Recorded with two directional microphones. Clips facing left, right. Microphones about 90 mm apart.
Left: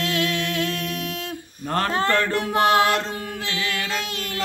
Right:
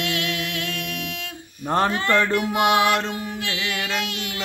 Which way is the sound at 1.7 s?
20° right (ahead or behind).